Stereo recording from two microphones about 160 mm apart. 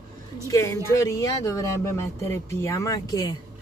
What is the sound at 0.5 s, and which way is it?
Speech, 15° left (ahead or behind).